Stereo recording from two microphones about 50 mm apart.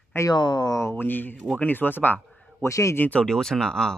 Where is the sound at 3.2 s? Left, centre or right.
Centre.